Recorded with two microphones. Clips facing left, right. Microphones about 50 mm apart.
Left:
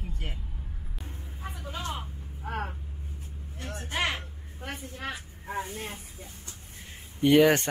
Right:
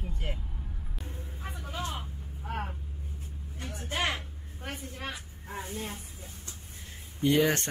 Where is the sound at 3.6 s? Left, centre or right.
Left.